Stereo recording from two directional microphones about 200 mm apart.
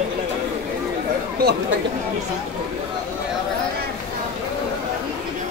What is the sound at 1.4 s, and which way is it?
Speech, 50° right (ahead or behind).